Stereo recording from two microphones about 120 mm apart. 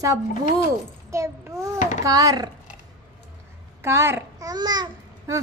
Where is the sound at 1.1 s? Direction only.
25° right (ahead or behind).